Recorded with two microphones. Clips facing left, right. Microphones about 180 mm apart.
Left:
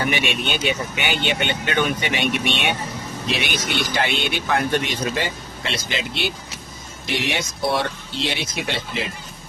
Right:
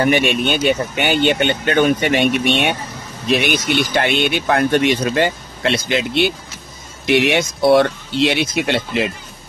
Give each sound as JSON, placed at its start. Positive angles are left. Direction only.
{"t": 0.0, "sound": "speech", "side_deg": -50}
{"t": 7.1, "sound": "speech", "side_deg": -65}